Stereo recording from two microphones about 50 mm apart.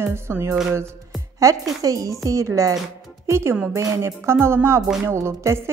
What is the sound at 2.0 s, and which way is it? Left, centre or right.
Speech, right.